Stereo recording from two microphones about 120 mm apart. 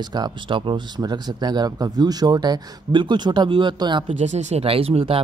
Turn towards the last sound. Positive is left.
turn(degrees=-50)  # may be behind; listen again after turning